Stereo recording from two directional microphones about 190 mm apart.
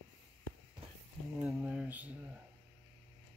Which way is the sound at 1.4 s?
5° right (ahead or behind).